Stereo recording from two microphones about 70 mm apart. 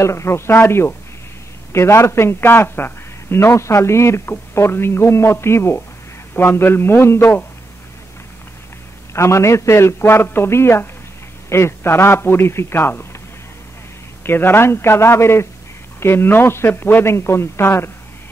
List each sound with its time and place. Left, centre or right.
0.0 s a man's voice: left
9.1 s a man's voice: left
14.2 s a man's voice: left